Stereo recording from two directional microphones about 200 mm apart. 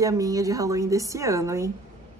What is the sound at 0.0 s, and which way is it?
A woman's voice, 15° right (ahead or behind).